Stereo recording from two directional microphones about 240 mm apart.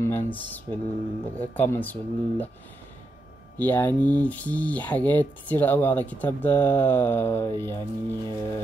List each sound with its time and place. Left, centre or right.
0.0 s speech: centre
3.5 s speech: centre